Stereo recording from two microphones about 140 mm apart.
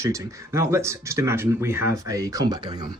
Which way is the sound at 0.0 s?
20° right (ahead or behind).